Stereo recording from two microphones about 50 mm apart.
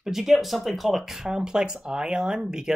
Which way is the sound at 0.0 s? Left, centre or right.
Centre.